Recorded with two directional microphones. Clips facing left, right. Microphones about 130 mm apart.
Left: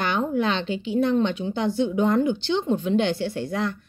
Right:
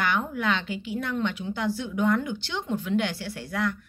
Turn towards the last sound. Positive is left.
turn(degrees=25)  # may be behind; listen again after turning